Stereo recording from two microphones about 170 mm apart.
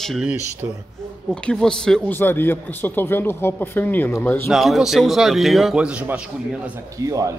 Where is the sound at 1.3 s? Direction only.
5° left (ahead or behind).